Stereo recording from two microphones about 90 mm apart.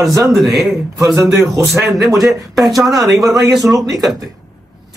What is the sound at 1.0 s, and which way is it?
Speech, 35° right (ahead or behind).